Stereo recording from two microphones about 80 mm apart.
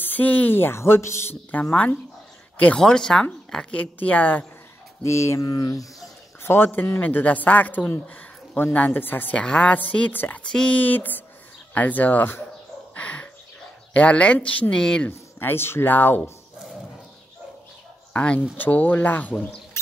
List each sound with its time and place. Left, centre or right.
0.0 s a woman's voice: left
1.5 s a woman's voice: centre
2.8 s a woman's voice: centre
5.0 s speech: left
5.5 s speech: left
6.4 s a woman's voice: left
10.4 s speech: centre
10.8 s a woman's voice: left
12.9 s a sound: centre
13.9 s speech: centre
15.0 s a woman's voice: left
18.1 s a woman's voice: centre